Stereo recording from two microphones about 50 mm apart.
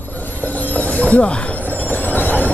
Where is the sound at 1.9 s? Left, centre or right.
Left.